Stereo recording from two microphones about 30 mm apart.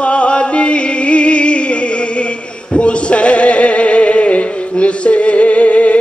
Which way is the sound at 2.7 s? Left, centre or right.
Left.